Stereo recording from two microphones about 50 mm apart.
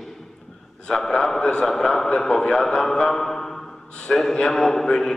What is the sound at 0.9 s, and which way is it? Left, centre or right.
A man's voice, centre.